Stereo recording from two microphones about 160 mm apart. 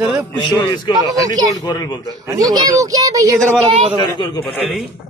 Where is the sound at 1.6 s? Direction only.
25° left (ahead or behind).